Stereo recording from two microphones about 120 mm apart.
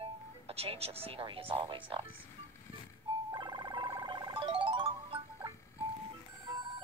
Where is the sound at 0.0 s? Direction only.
55° right (ahead or behind).